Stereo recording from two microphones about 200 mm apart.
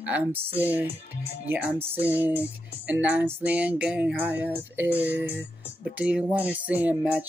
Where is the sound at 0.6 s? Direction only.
10° right (ahead or behind).